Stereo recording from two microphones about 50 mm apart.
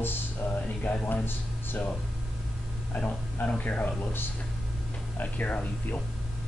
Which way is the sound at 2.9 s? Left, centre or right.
Left.